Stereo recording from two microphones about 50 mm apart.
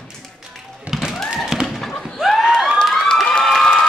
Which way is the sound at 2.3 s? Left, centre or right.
Centre.